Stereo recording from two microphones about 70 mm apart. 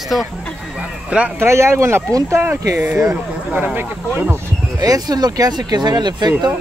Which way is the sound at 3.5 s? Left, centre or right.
Right.